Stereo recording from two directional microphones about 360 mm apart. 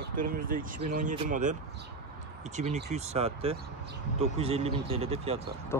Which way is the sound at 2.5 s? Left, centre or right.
Centre.